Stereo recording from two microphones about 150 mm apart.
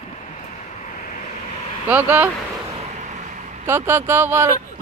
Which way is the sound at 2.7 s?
50° right (ahead or behind).